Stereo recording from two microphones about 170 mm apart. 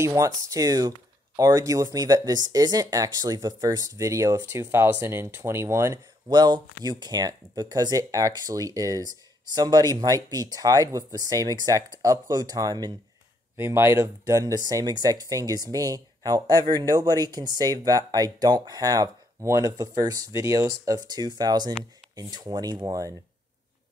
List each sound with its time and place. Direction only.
0.0 s speech: 20° right (ahead or behind)